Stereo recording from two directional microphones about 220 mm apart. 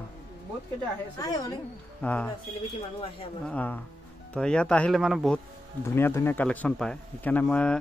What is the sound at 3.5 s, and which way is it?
A man's voice, 5° left (ahead or behind).